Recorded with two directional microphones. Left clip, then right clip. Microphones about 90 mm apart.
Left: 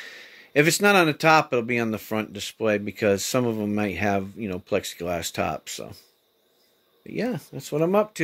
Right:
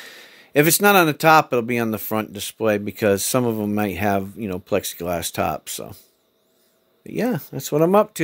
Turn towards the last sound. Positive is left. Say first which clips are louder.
# right 6 dB
turn(degrees=-70)  # may be behind; listen again after turning